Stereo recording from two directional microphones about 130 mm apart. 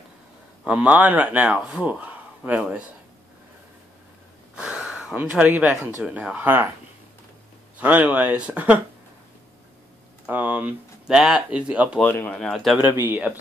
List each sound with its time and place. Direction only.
0.7 s speech: 10° right (ahead or behind)
4.6 s speech: 5° right (ahead or behind)
7.8 s speech: 10° right (ahead or behind)
10.2 s speech: 15° right (ahead or behind)
12.0 s speech: 10° left (ahead or behind)
12.8 s speech: 15° right (ahead or behind)